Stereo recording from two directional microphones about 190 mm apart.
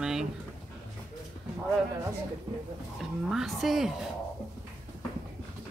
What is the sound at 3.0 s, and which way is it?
Speech, centre (ahead or behind).